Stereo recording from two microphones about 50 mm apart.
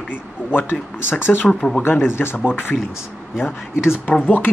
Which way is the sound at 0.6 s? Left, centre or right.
Left.